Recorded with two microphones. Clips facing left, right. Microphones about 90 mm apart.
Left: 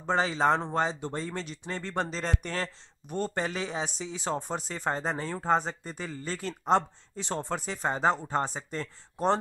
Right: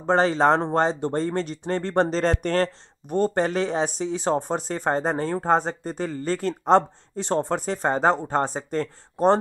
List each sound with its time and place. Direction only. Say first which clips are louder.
0.0 s speech: right 7 dB; 55° right (ahead or behind)